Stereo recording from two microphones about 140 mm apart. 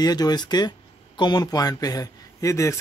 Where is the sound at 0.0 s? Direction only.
30° left (ahead or behind).